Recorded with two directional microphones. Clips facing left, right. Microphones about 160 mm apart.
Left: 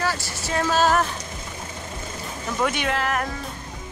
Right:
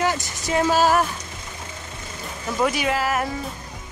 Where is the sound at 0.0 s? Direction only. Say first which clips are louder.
Right 3 dB; 20° right (ahead or behind).